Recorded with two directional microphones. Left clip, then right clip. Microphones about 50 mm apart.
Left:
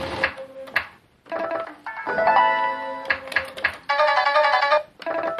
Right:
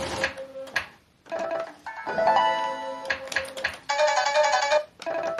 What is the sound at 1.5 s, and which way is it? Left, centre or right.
Music, right.